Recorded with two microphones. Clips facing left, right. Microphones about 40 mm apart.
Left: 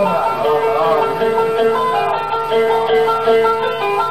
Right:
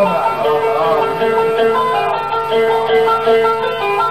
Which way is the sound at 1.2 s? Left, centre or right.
Centre.